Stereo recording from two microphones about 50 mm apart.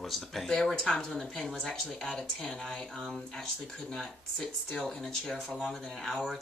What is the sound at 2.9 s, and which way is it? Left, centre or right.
Speech, centre.